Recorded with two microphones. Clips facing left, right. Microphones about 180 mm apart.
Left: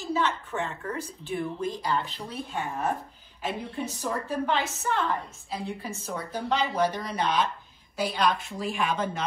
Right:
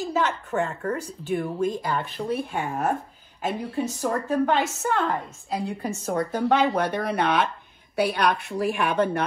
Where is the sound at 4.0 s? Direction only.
50° right (ahead or behind).